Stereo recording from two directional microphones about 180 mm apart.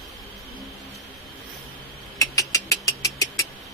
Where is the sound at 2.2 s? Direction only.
20° left (ahead or behind).